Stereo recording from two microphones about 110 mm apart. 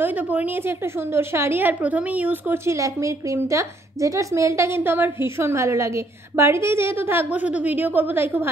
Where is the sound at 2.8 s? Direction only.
30° right (ahead or behind).